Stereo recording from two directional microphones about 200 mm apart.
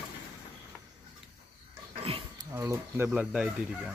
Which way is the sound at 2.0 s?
25° right (ahead or behind).